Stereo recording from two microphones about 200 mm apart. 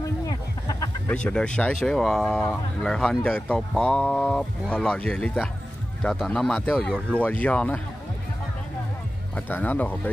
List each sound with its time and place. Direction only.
0.0 s a sound: 15° left (ahead or behind)
1.1 s speech: 5° left (ahead or behind)
9.3 s speech: 10° left (ahead or behind)